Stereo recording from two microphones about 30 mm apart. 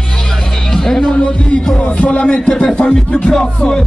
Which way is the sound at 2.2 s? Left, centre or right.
Left.